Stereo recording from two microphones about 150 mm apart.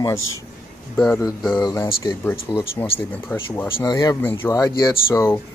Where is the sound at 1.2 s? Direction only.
15° left (ahead or behind).